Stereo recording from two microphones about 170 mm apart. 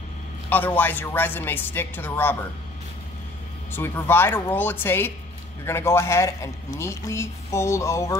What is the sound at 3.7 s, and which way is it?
A man's voice, 15° left (ahead or behind).